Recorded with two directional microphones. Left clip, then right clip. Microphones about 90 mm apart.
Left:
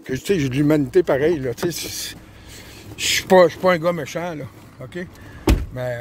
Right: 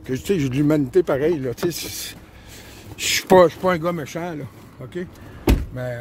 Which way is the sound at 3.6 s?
15° right (ahead or behind).